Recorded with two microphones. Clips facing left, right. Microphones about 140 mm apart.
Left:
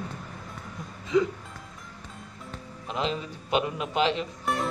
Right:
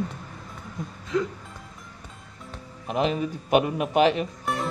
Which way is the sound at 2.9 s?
55° right (ahead or behind).